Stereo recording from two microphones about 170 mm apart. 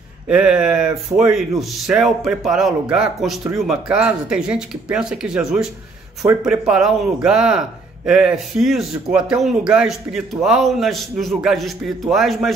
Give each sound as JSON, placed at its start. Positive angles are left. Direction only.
{"t": 0.3, "sound": "speech", "side_deg": -5}